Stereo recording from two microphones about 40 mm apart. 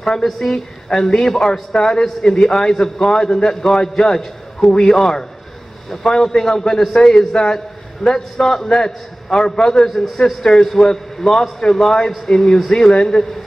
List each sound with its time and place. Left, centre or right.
0.0 s a man's voice: centre
9.8 s a man's voice: centre